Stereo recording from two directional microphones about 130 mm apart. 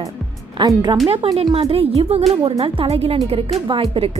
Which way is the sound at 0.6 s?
40° right (ahead or behind).